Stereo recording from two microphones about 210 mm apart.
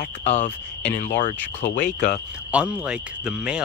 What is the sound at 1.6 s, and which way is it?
Speech, 30° left (ahead or behind).